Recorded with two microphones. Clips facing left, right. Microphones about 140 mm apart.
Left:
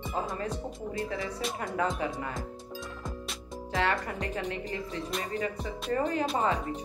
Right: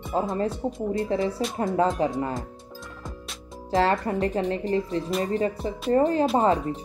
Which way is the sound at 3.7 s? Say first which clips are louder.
Right 7 dB; 30° right (ahead or behind).